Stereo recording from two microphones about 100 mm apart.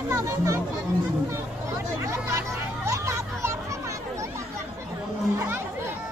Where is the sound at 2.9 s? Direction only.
30° right (ahead or behind).